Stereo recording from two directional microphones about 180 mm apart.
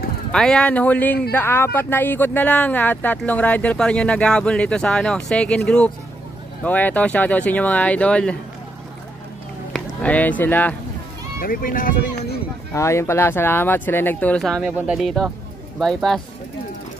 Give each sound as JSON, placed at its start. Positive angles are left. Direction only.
{"t": 0.3, "sound": "speech", "side_deg": 5}
{"t": 6.6, "sound": "speech", "side_deg": 10}
{"t": 9.7, "sound": "speech", "side_deg": 5}
{"t": 11.3, "sound": "speech", "side_deg": 50}
{"t": 12.7, "sound": "speech", "side_deg": 15}
{"t": 14.6, "sound": "speech", "side_deg": -5}